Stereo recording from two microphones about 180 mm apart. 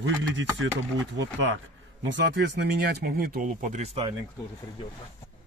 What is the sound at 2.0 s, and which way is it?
Speech, 75° right (ahead or behind).